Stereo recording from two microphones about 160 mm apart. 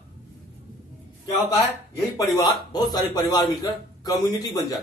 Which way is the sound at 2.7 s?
25° left (ahead or behind).